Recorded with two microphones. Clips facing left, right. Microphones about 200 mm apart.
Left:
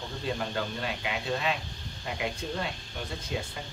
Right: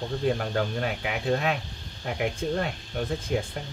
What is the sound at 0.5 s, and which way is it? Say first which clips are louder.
Speech: right 5 dB; 55° right (ahead or behind).